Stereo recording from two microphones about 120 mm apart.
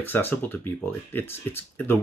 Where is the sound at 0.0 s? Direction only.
15° left (ahead or behind).